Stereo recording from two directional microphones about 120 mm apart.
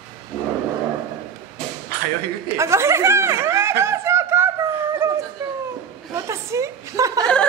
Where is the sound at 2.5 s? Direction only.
25° right (ahead or behind).